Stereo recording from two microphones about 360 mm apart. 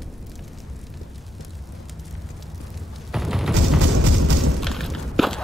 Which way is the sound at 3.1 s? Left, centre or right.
Centre.